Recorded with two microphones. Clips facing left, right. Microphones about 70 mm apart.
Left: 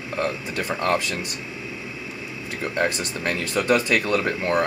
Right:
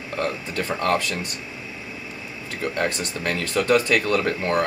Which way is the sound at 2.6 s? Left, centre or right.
Centre.